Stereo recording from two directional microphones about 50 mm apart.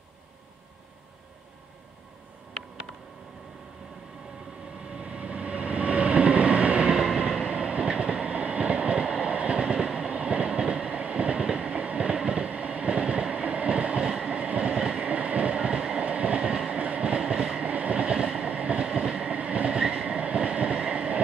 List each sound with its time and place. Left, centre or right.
4.8 s train: centre
17.6 s train: right
18.9 s train: centre
19.1 s train: right